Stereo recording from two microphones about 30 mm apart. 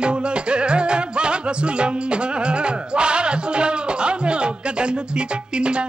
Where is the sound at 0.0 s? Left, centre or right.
Right.